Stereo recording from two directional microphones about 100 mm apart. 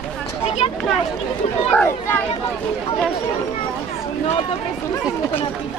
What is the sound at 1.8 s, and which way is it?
Speech, 25° left (ahead or behind).